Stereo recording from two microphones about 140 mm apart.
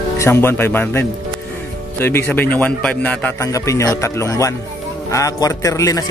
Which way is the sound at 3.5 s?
20° left (ahead or behind).